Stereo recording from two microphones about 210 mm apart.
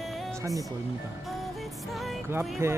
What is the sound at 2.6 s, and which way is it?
Speech, 10° right (ahead or behind).